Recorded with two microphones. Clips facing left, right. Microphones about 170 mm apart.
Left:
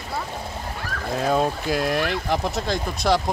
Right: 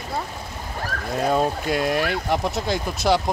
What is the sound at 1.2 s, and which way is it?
Speech, centre (ahead or behind).